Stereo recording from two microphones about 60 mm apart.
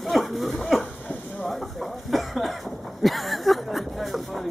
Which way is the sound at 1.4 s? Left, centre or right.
Centre.